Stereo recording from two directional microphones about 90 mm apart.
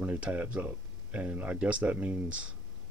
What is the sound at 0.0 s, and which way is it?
Speech, 15° right (ahead or behind).